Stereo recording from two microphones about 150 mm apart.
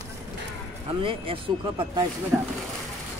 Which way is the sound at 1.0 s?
35° right (ahead or behind).